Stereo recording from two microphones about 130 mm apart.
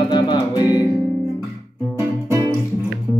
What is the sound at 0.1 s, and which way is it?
Music, 35° left (ahead or behind).